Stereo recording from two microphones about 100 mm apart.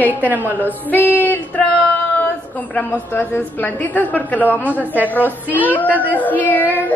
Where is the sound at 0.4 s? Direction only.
20° left (ahead or behind).